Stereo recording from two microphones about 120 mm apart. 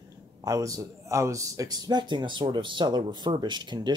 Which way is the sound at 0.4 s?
30° right (ahead or behind).